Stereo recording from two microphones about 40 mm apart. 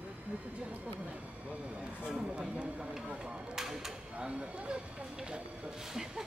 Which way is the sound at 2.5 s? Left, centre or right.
Right.